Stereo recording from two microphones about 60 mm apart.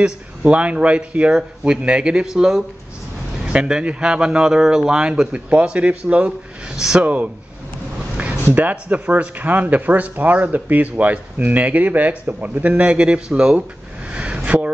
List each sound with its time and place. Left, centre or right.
0.5 s a man's voice: centre
6.8 s a man's voice: centre
8.5 s speech: right
14.1 s a sound: right